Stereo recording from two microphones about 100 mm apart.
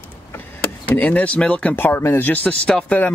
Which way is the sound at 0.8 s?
15° left (ahead or behind).